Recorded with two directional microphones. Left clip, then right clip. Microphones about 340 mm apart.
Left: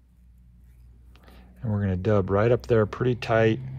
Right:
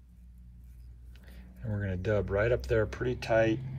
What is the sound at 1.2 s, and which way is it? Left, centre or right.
Speech, centre.